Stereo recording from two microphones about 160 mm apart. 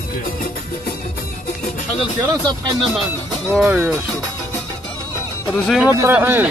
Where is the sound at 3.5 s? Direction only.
10° right (ahead or behind).